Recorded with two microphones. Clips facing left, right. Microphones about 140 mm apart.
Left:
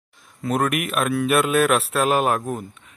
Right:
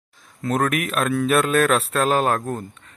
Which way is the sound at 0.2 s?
Centre (ahead or behind).